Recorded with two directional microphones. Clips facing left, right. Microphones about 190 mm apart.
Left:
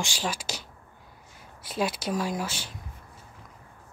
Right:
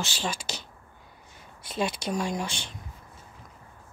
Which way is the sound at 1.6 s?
5° left (ahead or behind).